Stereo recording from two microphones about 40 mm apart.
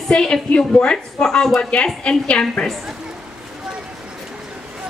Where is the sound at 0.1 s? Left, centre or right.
Centre.